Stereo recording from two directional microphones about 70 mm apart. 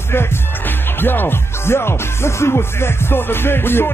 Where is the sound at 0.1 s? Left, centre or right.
Left.